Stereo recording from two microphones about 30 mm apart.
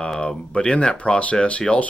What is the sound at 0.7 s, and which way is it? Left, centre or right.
Speech, left.